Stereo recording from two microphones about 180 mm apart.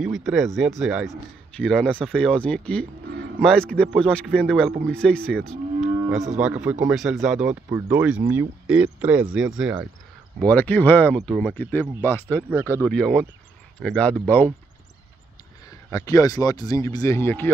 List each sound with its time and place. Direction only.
0.0 s a man's voice: centre (ahead or behind)
10.4 s a man's voice: 10° left (ahead or behind)
15.9 s speech: 20° left (ahead or behind)